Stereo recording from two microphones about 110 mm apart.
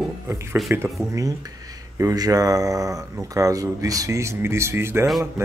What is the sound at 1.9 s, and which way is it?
Speech, 30° right (ahead or behind).